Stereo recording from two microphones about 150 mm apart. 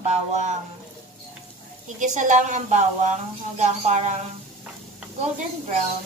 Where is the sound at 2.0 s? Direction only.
55° right (ahead or behind).